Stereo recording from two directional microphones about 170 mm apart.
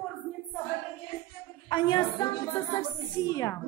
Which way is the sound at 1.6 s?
30° left (ahead or behind).